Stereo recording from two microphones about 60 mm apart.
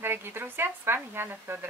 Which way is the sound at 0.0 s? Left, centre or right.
Right.